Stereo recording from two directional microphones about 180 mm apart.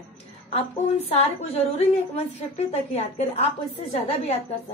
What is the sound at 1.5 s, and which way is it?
A woman's voice, 35° left (ahead or behind).